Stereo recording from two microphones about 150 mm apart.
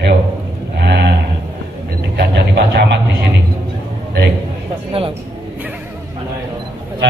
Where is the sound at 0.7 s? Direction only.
90° right.